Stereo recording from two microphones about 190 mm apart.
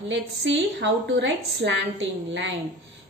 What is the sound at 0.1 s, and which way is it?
A woman's voice, 70° right (ahead or behind).